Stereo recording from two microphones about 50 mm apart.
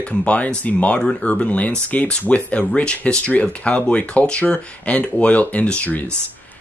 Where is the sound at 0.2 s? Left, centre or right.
Left.